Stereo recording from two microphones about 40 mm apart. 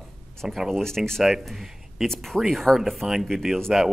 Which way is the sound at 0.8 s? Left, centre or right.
Centre.